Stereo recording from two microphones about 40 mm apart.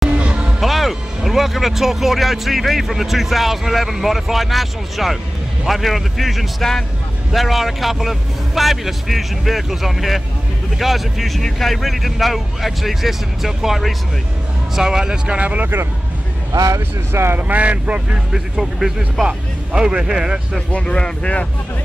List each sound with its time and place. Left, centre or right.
0.2 s music: right
0.6 s speech: centre
14.8 s speech: centre
15.3 s speech: right
17.1 s speech: right
17.4 s speech: right
18.6 s speech: centre
19.2 s speech: right
20.7 s speech: left